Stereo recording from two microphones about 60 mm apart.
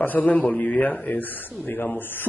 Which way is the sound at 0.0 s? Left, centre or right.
Left.